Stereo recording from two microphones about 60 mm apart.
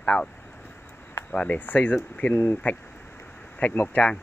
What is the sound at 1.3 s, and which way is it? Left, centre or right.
Speech, left.